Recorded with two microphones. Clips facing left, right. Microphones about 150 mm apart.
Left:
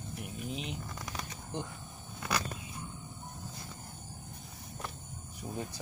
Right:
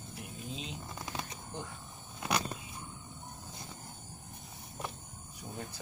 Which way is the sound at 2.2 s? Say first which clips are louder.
Right 1 dB; 25° right (ahead or behind).